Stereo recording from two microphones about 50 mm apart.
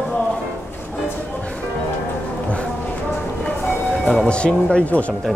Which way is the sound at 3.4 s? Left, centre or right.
Centre.